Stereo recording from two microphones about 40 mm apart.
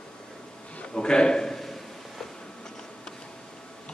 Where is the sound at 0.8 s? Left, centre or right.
Left.